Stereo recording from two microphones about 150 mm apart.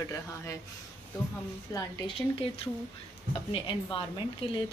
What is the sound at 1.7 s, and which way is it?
Speech, 25° left (ahead or behind).